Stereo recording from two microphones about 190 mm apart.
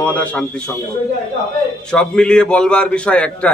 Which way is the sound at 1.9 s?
5° left (ahead or behind).